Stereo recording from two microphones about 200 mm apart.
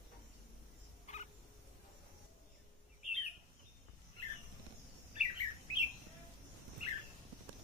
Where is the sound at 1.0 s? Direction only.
35° left (ahead or behind).